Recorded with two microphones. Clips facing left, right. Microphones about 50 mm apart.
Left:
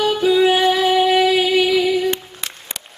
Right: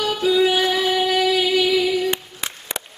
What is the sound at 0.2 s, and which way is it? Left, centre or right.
Music, centre.